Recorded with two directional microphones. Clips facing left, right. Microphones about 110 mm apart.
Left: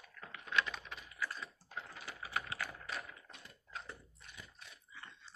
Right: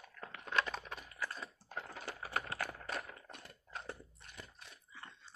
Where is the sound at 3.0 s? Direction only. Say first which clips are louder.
Right 3 dB; 50° right (ahead or behind).